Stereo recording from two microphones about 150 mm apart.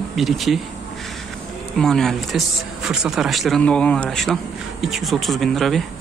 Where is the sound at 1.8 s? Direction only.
5° left (ahead or behind).